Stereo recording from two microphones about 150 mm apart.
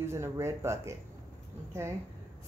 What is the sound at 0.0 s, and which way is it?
Speech, 15° right (ahead or behind).